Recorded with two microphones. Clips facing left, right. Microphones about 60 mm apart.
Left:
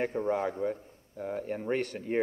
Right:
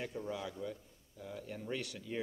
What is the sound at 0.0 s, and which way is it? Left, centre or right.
A man's voice, left.